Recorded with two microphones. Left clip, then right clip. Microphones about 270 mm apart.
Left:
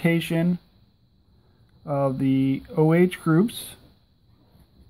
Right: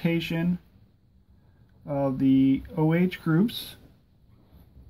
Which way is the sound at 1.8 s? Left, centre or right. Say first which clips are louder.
Left 2 dB; left.